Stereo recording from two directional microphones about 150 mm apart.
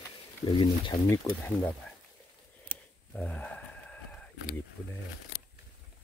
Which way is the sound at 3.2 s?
10° left (ahead or behind).